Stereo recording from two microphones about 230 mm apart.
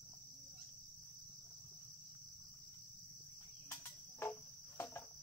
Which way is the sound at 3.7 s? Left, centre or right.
Centre.